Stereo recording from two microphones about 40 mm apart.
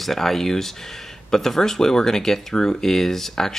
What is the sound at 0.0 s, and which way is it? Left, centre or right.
Speech, centre.